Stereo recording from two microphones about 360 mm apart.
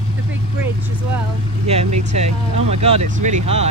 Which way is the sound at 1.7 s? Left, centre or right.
Centre.